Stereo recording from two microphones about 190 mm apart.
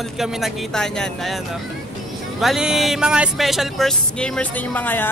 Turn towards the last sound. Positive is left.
turn(degrees=10)  # may be behind; listen again after turning